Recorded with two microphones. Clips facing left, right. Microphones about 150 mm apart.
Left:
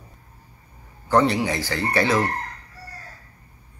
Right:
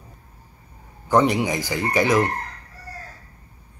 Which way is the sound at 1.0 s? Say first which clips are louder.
Right 1 dB; 15° right (ahead or behind).